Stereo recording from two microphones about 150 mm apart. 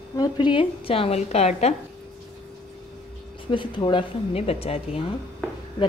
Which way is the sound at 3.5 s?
30° left (ahead or behind).